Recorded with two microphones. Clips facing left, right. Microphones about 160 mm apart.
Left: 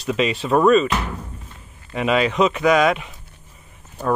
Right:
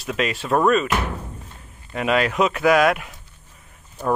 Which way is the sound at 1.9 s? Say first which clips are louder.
Left 1 dB; centre (ahead or behind).